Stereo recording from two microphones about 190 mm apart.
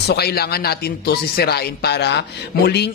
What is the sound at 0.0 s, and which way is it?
Speech, 60° left (ahead or behind).